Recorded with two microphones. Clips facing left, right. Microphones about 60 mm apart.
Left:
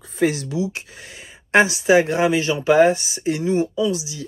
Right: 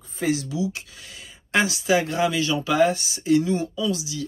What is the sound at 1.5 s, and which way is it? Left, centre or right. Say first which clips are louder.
Speech: left 6 dB; left.